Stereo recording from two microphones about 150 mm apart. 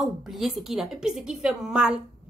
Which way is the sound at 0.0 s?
Centre (ahead or behind).